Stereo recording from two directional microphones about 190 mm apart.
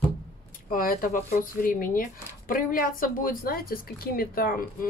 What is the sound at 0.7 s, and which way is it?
A woman's voice, 45° left (ahead or behind).